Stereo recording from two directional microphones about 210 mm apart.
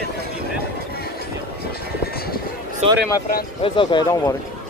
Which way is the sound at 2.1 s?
45° left (ahead or behind).